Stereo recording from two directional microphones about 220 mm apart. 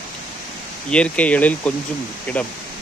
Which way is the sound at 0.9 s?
5° left (ahead or behind).